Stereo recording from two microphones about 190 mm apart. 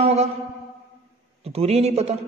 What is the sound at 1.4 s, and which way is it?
Speech, 35° right (ahead or behind).